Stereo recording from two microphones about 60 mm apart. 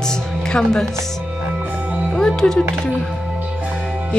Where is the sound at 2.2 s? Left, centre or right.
Centre.